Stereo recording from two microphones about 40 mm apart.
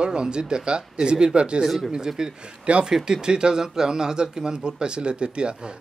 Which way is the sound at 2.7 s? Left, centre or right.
Right.